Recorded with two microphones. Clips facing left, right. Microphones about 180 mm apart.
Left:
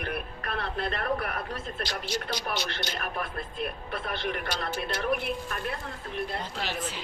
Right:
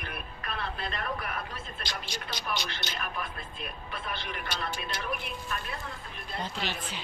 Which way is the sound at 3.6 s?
60° left (ahead or behind).